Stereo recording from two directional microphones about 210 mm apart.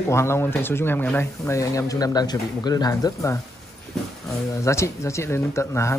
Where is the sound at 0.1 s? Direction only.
10° left (ahead or behind).